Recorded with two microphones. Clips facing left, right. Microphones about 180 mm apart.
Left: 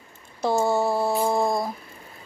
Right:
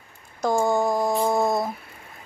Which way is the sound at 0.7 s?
15° right (ahead or behind).